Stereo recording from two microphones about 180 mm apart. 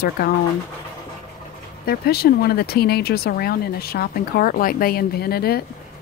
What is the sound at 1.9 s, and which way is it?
Speech, 60° left (ahead or behind).